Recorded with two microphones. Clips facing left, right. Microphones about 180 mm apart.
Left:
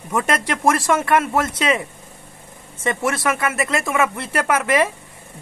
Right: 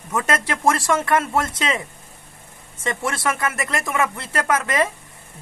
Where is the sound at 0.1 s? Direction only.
10° left (ahead or behind).